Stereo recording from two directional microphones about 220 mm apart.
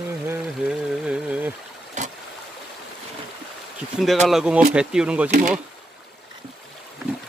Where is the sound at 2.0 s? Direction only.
35° right (ahead or behind).